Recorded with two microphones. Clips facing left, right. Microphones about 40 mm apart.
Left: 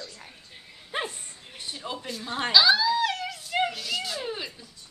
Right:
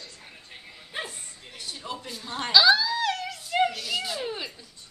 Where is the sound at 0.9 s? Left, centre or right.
Left.